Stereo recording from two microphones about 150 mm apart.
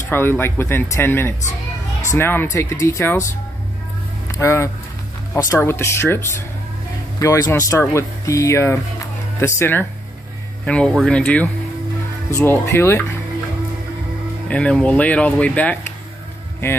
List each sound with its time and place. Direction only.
0.1 s speech: 15° left (ahead or behind)
4.3 s speech: 20° left (ahead or behind)
14.5 s speech: 5° left (ahead or behind)